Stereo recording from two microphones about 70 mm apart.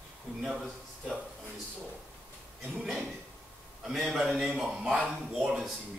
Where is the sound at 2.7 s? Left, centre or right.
Centre.